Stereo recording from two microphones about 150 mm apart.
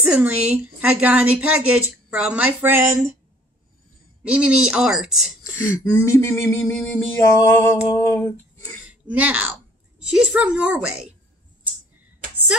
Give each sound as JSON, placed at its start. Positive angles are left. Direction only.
{"t": 0.0, "sound": "a woman's voice", "side_deg": -10}
{"t": 4.2, "sound": "speech", "side_deg": -10}
{"t": 5.5, "sound": "a sound", "side_deg": 15}
{"t": 9.1, "sound": "a woman's voice", "side_deg": -10}